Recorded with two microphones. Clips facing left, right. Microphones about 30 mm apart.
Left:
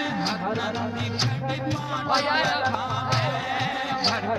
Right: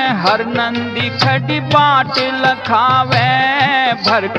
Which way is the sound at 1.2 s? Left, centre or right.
Right.